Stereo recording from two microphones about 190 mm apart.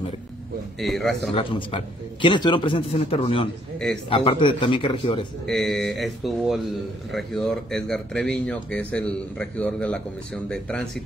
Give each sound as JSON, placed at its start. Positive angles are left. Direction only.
{"t": 0.7, "sound": "speech", "side_deg": 0}
{"t": 1.3, "sound": "speech", "side_deg": 30}
{"t": 5.5, "sound": "speech", "side_deg": 0}